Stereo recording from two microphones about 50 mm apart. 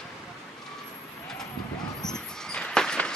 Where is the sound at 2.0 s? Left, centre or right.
Centre.